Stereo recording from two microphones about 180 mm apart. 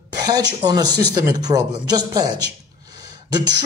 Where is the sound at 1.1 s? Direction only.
20° right (ahead or behind).